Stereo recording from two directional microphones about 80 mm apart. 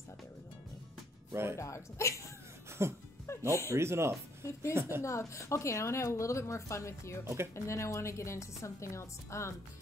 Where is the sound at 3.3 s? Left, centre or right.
Left.